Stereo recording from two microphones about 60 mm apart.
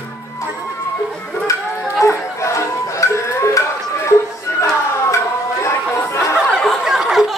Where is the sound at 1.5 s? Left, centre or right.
Left.